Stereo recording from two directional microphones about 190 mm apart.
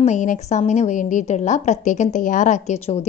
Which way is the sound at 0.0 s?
40° left (ahead or behind).